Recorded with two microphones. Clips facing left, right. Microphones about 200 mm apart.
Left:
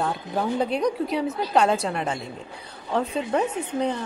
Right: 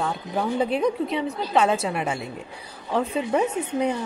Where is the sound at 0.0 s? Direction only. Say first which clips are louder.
Even; centre (ahead or behind).